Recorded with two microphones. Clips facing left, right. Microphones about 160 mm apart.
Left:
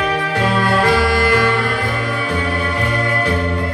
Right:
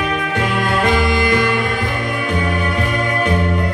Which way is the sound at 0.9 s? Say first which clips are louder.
Left 1 dB; 25° right (ahead or behind).